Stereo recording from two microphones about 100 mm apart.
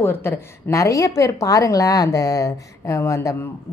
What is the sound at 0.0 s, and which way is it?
A woman's voice, 20° left (ahead or behind).